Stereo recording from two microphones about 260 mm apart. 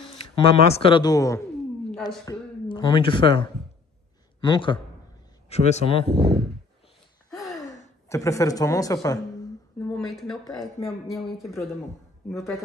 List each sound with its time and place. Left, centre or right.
0.0 s speech: left
6.0 s speech: right
7.3 s gasp: centre
7.6 s a sound: left
8.1 s a woman's voice: centre
9.8 s speech: centre